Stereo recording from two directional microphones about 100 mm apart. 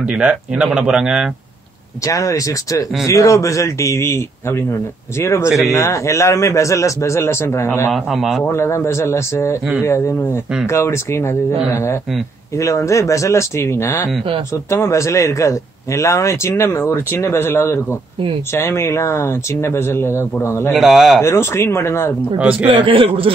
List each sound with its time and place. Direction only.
0.0 s speech: 10° right (ahead or behind)
2.0 s a man's voice: 35° left (ahead or behind)
7.9 s a man's voice: centre (ahead or behind)
8.5 s a man's voice: 25° left (ahead or behind)
20.7 s a man's voice: centre (ahead or behind)
21.2 s a man's voice: 25° left (ahead or behind)
22.4 s speech: 15° right (ahead or behind)
22.8 s a man's voice: 60° right (ahead or behind)